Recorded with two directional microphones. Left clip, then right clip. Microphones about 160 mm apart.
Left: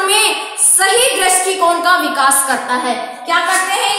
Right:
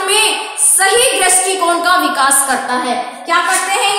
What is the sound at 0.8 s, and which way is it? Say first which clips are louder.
Speech: right 1 dB; centre (ahead or behind).